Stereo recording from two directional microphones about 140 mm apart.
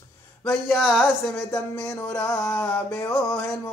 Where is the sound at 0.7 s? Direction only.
5° right (ahead or behind).